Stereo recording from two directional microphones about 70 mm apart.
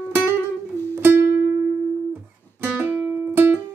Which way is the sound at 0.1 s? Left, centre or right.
Right.